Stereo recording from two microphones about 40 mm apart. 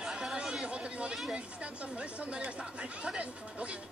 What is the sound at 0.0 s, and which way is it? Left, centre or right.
Chatter, centre.